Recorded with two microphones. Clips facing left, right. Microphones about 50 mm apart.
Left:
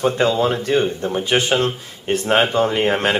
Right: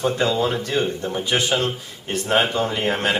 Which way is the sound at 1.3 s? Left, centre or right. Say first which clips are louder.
Left 3 dB; left.